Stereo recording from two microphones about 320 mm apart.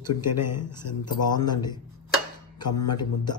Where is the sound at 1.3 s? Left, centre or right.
Centre.